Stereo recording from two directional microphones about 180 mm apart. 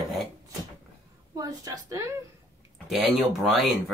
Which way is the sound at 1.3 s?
20° right (ahead or behind).